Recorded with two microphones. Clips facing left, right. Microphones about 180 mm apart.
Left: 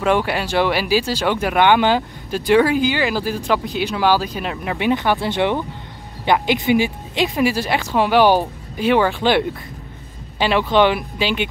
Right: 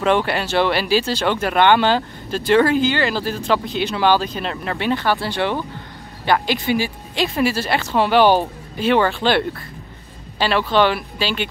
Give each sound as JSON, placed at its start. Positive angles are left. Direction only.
{"t": 0.0, "sound": "speech", "side_deg": 5}